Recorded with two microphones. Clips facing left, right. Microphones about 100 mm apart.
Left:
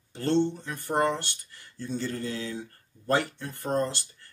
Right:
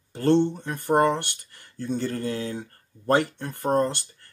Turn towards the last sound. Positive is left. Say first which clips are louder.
# right 5 dB
turn(degrees=-50)  # may be behind; listen again after turning